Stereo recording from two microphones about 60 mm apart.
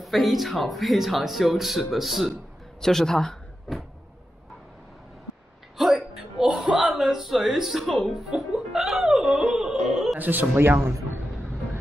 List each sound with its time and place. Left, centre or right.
0.0 s speech: centre
2.8 s speech: centre
5.8 s a sound: centre
8.1 s music: centre
10.1 s music: right
10.5 s a man's voice: right